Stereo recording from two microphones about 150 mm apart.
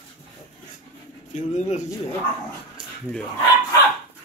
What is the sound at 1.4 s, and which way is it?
Speech, 55° left (ahead or behind).